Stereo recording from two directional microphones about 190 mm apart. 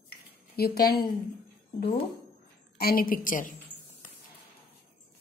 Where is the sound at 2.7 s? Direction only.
50° left (ahead or behind).